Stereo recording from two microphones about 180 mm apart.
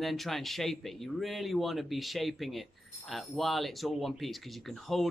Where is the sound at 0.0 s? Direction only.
Centre (ahead or behind).